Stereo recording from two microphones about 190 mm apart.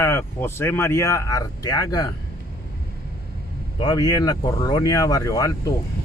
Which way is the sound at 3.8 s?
20° left (ahead or behind).